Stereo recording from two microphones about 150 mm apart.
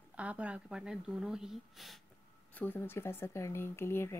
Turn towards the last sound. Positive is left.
turn(degrees=15)  # may be behind; listen again after turning